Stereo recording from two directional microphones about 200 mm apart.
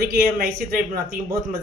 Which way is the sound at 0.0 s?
50° right (ahead or behind).